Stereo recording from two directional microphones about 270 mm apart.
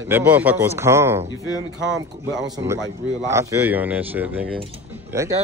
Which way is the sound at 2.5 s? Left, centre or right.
Centre.